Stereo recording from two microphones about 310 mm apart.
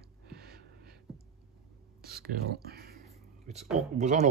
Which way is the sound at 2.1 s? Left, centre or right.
Right.